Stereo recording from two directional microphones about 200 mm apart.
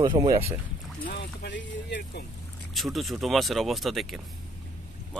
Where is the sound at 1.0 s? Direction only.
55° left (ahead or behind).